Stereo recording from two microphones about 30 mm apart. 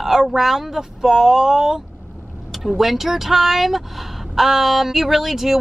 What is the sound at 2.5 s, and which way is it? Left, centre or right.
Speech, centre.